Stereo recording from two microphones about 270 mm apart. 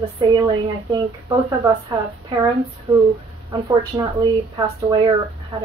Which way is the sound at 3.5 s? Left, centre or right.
Centre.